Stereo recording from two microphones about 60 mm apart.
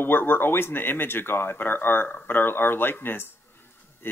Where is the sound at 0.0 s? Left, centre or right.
Left.